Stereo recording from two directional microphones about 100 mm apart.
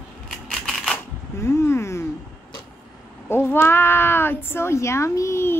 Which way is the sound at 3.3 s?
25° left (ahead or behind).